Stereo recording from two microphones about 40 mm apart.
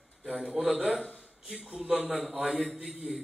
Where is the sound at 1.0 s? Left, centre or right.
Left.